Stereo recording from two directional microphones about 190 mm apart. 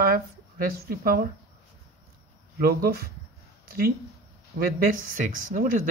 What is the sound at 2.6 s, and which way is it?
Speech, 50° right (ahead or behind).